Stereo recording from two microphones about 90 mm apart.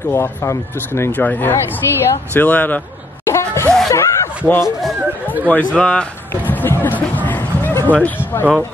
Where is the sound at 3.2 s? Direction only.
30° left (ahead or behind).